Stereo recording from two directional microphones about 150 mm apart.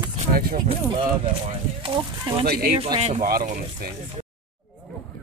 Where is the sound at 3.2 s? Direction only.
75° right (ahead or behind).